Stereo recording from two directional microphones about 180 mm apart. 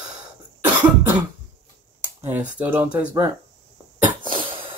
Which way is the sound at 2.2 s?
10° right (ahead or behind).